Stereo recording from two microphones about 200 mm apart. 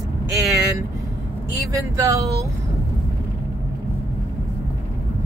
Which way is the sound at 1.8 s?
15° right (ahead or behind).